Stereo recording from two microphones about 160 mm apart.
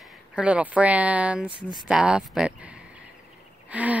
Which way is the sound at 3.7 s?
10° right (ahead or behind).